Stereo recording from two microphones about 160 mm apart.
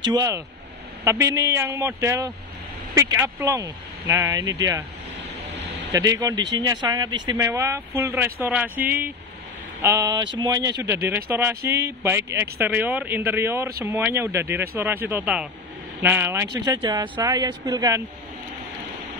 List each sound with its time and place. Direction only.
0.0 s speech: 25° right (ahead or behind)
5.9 s speech: 20° right (ahead or behind)
7.3 s speech: 15° right (ahead or behind)
16.5 s speech: 25° right (ahead or behind)